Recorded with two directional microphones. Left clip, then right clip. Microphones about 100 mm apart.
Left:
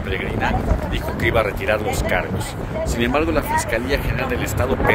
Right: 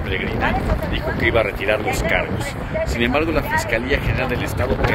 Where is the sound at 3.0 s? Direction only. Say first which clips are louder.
Left 1 dB; 10° left (ahead or behind).